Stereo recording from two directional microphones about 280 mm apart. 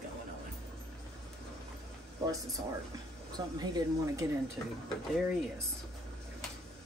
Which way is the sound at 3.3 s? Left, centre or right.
Centre.